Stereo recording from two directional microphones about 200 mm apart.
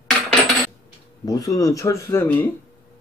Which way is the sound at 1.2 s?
20° left (ahead or behind).